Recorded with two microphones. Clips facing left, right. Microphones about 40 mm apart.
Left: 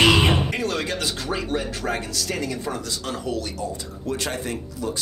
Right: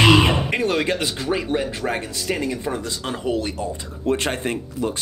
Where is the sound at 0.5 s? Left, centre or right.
Right.